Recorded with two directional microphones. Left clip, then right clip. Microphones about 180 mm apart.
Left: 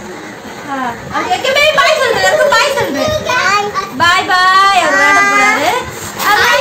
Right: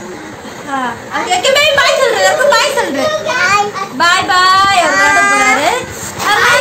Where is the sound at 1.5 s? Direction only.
20° right (ahead or behind).